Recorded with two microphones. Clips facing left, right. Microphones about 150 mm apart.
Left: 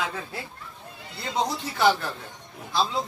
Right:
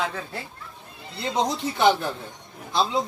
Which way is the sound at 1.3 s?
20° right (ahead or behind).